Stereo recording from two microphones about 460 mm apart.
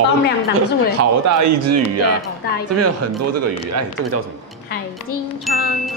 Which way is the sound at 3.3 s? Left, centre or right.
Right.